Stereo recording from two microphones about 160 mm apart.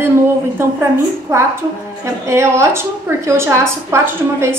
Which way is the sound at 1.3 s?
15° right (ahead or behind).